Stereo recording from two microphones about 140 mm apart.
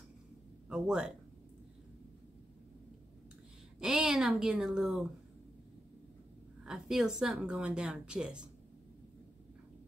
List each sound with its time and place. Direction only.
0.7 s speech: 5° right (ahead or behind)
3.8 s speech: 5° right (ahead or behind)
6.6 s speech: 5° right (ahead or behind)